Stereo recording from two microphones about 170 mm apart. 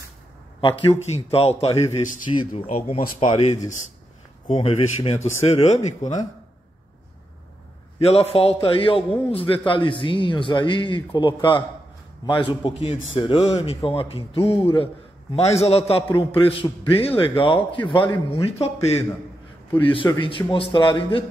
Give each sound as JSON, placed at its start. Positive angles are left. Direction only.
{"t": 0.6, "sound": "a man's voice", "side_deg": 30}
{"t": 8.0, "sound": "a man's voice", "side_deg": 40}